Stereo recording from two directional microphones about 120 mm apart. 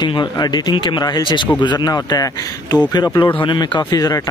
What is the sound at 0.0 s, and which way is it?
Speech, 35° left (ahead or behind).